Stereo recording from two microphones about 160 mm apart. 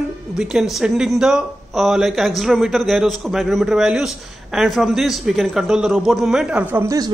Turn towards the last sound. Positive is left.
turn(degrees=-10)  # may be behind; listen again after turning